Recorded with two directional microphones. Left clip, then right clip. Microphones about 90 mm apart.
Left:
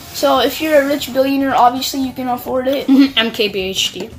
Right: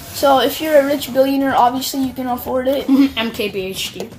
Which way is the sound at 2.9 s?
35° left (ahead or behind).